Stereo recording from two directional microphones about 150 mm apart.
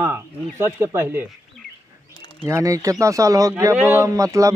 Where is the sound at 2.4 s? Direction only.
20° right (ahead or behind).